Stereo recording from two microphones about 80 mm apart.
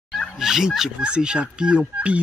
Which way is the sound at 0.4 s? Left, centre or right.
Centre.